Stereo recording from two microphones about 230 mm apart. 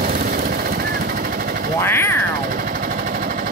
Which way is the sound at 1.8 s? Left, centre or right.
Centre.